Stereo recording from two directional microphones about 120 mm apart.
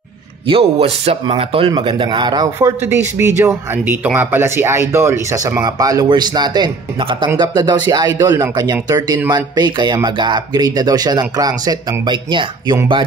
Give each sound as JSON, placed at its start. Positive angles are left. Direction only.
{"t": 0.5, "sound": "speech", "side_deg": -55}
{"t": 2.8, "sound": "speech", "side_deg": -20}